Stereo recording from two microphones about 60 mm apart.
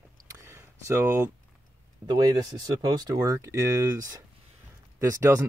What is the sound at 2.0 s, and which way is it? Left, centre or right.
Speech, right.